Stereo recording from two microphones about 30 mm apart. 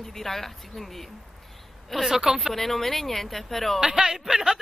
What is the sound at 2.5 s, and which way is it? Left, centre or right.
Speech, centre.